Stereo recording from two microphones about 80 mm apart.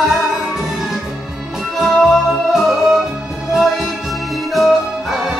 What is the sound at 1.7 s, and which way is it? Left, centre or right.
Music, centre.